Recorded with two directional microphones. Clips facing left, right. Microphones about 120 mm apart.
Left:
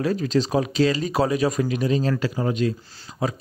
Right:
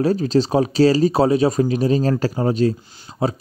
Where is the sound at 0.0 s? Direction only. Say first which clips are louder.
Right 5 dB; 35° right (ahead or behind).